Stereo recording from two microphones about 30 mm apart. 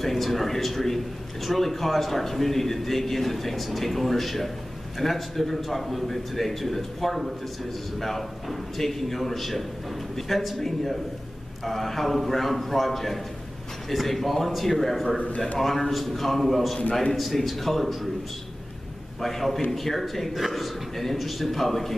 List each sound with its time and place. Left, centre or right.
0.0 s a man's voice: centre
15.1 s a man's voice: left
15.6 s a man's voice: centre
19.2 s a man's voice: centre